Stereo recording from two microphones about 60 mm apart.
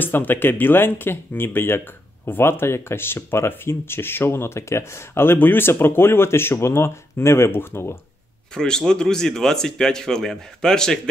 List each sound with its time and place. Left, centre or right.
0.0 s speech: left
8.5 s a man's voice: centre